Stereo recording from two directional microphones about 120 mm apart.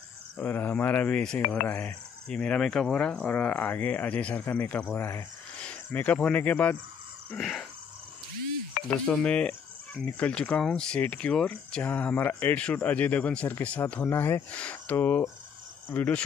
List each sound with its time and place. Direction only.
0.4 s speech: 15° left (ahead or behind)
5.6 s speech: 10° left (ahead or behind)
7.2 s a sound: centre (ahead or behind)
8.8 s speech: 10° left (ahead or behind)